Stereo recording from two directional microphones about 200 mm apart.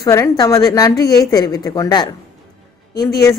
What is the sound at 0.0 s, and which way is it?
A woman's voice, 15° left (ahead or behind).